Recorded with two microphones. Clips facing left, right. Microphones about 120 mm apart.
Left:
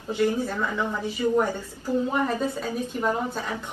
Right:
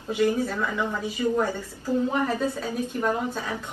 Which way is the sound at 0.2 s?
15° left (ahead or behind).